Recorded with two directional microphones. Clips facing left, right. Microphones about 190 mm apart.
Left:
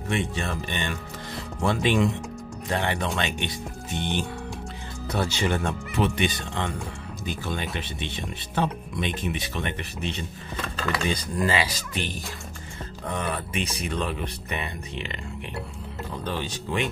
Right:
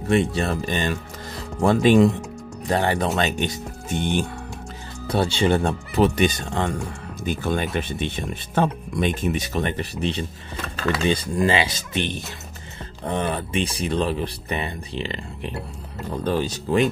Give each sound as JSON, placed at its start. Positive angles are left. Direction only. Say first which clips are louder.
{"t": 0.1, "sound": "speech", "louder": "right 8 dB", "side_deg": -35}
{"t": 5.0, "sound": "speech", "louder": "right 6 dB", "side_deg": -30}